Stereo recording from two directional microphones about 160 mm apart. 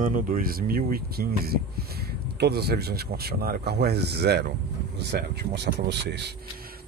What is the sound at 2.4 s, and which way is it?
Speech, 90° right.